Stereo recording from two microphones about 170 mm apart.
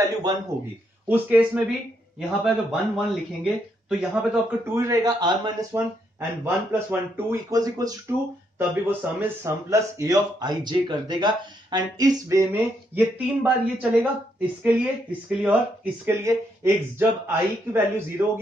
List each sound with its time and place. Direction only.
0.0 s a man's voice: 20° right (ahead or behind)
1.0 s speech: 10° right (ahead or behind)